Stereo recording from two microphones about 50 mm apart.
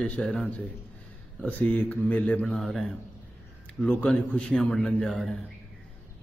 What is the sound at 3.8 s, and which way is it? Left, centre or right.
Speech, left.